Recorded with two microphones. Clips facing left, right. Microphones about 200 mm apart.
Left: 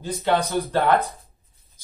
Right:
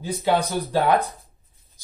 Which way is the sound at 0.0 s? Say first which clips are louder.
Even; 15° right (ahead or behind).